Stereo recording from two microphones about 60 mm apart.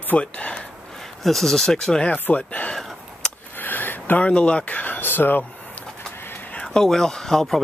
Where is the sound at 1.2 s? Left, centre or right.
Centre.